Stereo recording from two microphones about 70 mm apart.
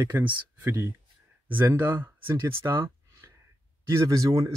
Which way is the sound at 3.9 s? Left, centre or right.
Right.